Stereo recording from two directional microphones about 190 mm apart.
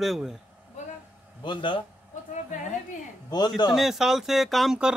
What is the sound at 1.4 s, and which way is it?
Speech, 25° left (ahead or behind).